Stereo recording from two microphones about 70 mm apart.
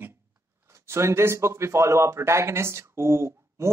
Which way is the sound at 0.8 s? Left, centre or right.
Right.